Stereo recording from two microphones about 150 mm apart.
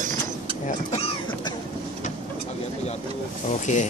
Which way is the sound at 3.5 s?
50° left (ahead or behind).